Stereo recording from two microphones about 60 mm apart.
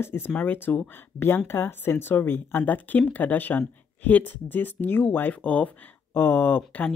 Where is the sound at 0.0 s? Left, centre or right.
Left.